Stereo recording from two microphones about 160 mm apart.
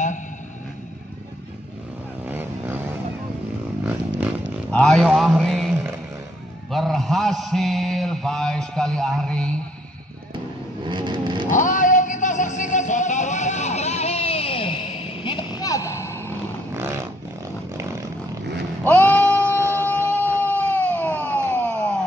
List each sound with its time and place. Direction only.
2.2 s vehicle: 10° right (ahead or behind)
4.6 s a man's voice: 5° left (ahead or behind)
6.7 s mantra: centre (ahead or behind)
10.9 s vehicle: 30° right (ahead or behind)
11.5 s a sound: 55° left (ahead or behind); by 16.3 s 15° left (ahead or behind)
18.9 s sheep: 10° left (ahead or behind)
19.6 s shofar: 15° right (ahead or behind)
19.9 s a sound: 15° left (ahead or behind)